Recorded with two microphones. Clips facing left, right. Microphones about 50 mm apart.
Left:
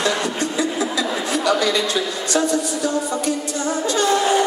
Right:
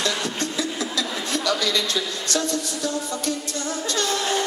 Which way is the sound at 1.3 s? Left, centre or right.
Left.